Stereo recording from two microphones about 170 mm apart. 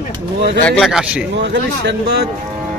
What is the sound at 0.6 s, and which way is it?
Speech, 10° left (ahead or behind).